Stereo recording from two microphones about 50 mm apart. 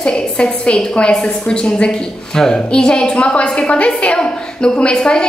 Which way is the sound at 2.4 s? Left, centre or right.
Centre.